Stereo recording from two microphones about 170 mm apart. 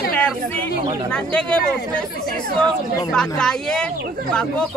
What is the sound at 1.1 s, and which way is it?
Speech, 5° left (ahead or behind).